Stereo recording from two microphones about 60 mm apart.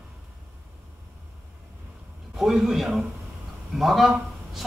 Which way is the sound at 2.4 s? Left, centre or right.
Centre.